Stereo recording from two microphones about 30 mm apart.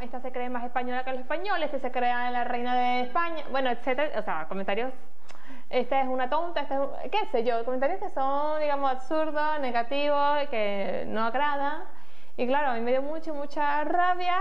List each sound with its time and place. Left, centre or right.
0.1 s a woman's voice: centre